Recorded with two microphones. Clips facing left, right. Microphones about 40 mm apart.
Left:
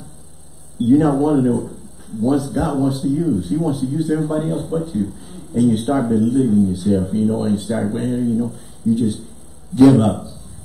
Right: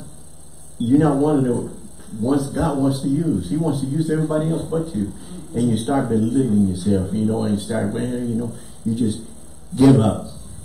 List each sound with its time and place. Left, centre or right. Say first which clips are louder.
0.7 s speech: left 2 dB; centre